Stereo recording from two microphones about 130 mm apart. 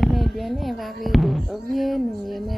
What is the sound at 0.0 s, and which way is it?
Speech, centre (ahead or behind).